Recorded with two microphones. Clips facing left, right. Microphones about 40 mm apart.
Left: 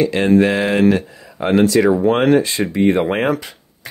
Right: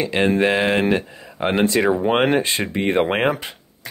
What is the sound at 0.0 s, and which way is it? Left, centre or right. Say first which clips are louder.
Speech: left 4 dB; centre.